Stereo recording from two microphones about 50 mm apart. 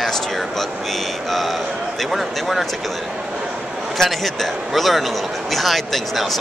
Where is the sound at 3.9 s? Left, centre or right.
Centre.